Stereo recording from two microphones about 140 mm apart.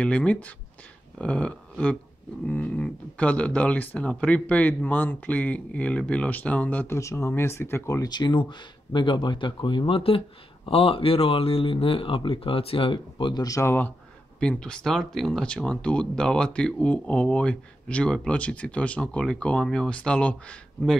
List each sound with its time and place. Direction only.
0.0 s speech: 10° left (ahead or behind)